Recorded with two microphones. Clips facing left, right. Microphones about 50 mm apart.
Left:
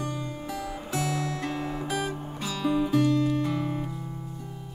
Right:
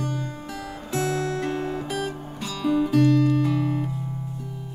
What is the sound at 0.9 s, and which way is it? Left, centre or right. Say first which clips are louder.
Music: right 5 dB; right.